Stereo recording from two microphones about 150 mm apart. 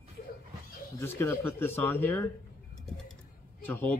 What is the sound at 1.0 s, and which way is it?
Speech, 15° left (ahead or behind).